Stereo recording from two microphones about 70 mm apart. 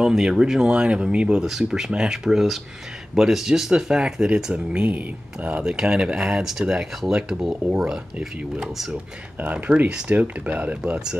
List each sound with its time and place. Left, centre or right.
0.0 s speech: centre
5.6 s speech: centre
9.4 s speech: centre